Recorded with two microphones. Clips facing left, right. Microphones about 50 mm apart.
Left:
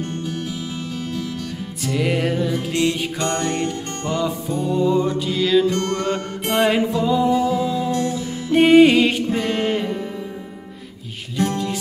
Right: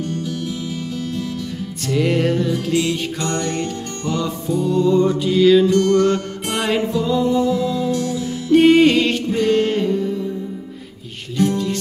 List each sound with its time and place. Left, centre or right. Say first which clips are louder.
0.0 s music: right 2 dB; left
1.8 s music: right 3 dB; centre
3.2 s music: even; left
4.2 s music: right 3 dB; centre
5.7 s music: right 6 dB; left
8.5 s music: even; centre
9.8 s music: right 6 dB; left
11.3 s music: right 3 dB; centre